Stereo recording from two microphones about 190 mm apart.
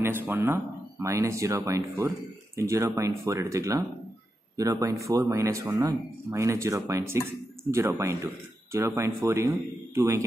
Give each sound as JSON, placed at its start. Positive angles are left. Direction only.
{"t": 0.0, "sound": "speech", "side_deg": -10}